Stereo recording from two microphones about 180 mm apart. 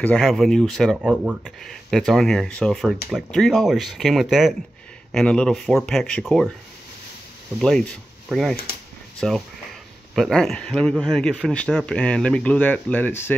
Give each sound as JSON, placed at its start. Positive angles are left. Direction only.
{"t": 0.0, "sound": "speech", "side_deg": 5}
{"t": 7.6, "sound": "speech", "side_deg": 5}